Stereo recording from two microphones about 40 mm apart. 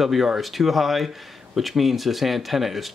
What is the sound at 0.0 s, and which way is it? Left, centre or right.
Speech, centre.